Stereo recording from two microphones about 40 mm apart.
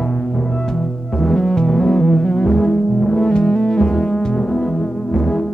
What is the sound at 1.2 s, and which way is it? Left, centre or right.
Music, centre.